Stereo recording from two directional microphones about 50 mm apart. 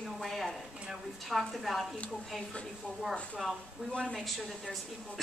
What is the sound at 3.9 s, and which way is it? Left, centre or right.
Speech, centre.